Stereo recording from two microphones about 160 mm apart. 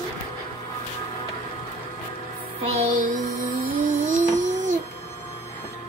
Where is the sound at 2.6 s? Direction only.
45° right (ahead or behind).